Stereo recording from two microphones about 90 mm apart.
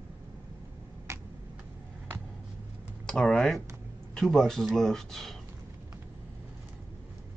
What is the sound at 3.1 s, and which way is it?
Speech, 10° left (ahead or behind).